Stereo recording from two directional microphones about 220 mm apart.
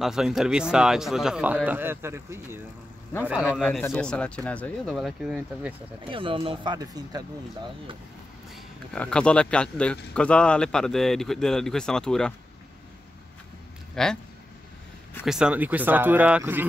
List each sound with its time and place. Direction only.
0.0 s speech: centre (ahead or behind)
6.0 s speech: 25° right (ahead or behind)
8.9 s speech: 5° left (ahead or behind)
14.0 s speech: centre (ahead or behind)
15.2 s speech: 5° right (ahead or behind)